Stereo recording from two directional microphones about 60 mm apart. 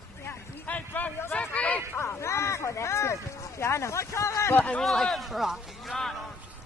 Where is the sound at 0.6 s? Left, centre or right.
Left.